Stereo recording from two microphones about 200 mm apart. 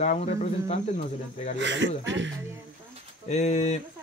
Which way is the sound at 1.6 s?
65° right (ahead or behind).